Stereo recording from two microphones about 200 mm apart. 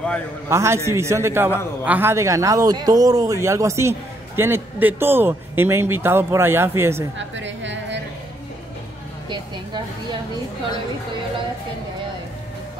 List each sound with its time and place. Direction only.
0.5 s a man's voice: 15° right (ahead or behind)
7.2 s music: 65° right (ahead or behind)